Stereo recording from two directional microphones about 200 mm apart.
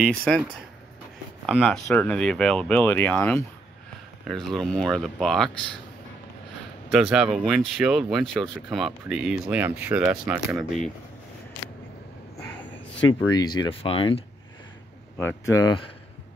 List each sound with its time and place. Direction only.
0.0 s speech: 5° left (ahead or behind)
1.4 s speech: centre (ahead or behind)
6.9 s speech: 5° right (ahead or behind)
13.2 s speech: 20° left (ahead or behind)
15.1 s speech: 15° left (ahead or behind)